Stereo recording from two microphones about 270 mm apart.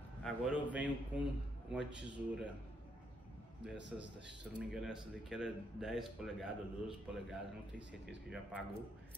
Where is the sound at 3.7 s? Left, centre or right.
Centre.